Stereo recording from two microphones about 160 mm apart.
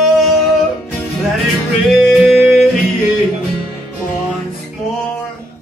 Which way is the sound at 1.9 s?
Centre (ahead or behind).